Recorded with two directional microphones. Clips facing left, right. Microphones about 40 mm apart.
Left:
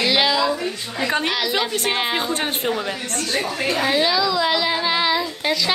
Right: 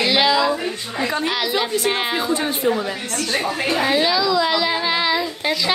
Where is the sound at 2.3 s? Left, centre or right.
Left.